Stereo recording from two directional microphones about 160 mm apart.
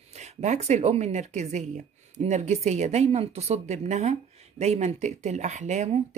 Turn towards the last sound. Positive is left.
turn(degrees=-45)  # may be behind; listen again after turning